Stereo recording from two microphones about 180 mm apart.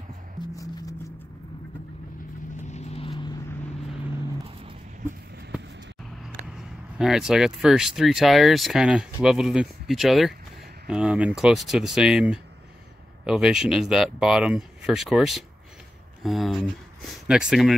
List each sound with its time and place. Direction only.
0.6 s music: 20° left (ahead or behind)
2.6 s vehicle: 40° left (ahead or behind)
7.0 s speech: 5° right (ahead or behind)